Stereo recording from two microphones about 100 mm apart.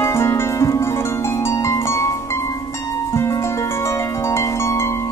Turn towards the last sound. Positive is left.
turn(degrees=30)  # may be behind; listen again after turning